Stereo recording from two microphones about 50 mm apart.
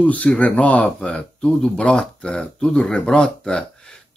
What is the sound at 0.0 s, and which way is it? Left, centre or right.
Speech, left.